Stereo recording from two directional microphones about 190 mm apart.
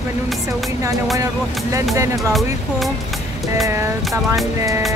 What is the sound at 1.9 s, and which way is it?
Music, 15° right (ahead or behind).